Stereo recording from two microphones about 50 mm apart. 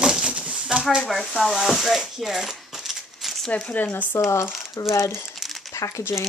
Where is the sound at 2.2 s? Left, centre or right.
Centre.